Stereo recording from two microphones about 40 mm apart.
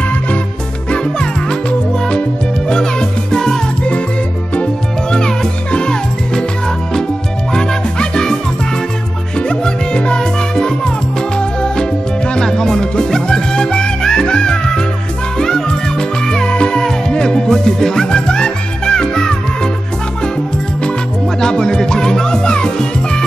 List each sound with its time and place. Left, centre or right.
2.7 s music: centre
5.1 s music: left
7.5 s music: centre
9.5 s music: left
21.4 s music: centre